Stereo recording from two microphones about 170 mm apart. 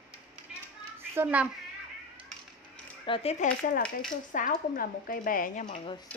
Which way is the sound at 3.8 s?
5° left (ahead or behind).